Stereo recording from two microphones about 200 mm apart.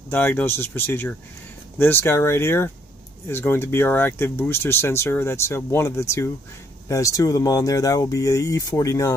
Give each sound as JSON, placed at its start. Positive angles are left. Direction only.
{"t": 0.1, "sound": "speech", "side_deg": 10}